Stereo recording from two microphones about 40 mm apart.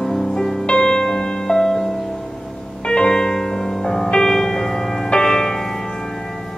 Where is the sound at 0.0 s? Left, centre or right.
Centre.